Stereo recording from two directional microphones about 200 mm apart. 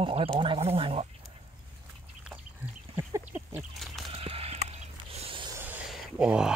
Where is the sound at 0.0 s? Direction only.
25° right (ahead or behind).